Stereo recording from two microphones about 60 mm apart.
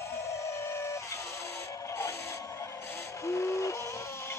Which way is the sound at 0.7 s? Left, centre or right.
Left.